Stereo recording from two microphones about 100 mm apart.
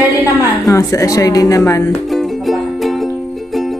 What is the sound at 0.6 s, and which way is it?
Music, 35° left (ahead or behind).